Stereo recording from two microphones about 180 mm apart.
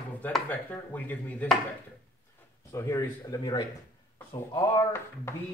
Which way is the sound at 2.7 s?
15° left (ahead or behind).